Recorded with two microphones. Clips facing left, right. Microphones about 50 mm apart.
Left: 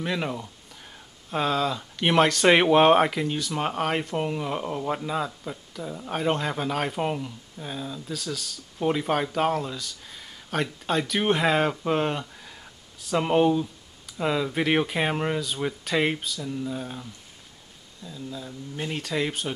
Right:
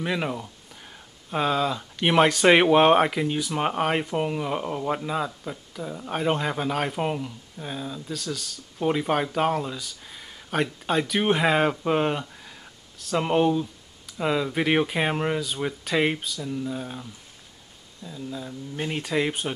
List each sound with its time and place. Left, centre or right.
0.0 s speech: centre